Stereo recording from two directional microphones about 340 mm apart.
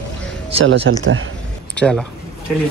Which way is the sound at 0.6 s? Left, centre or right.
Right.